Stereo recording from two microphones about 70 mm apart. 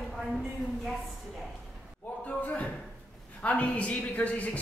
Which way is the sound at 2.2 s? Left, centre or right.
Centre.